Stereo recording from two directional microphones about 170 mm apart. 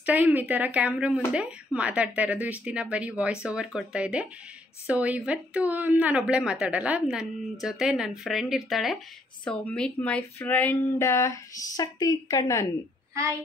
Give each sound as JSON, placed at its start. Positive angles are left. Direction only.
{"t": 0.0, "sound": "speech", "side_deg": -10}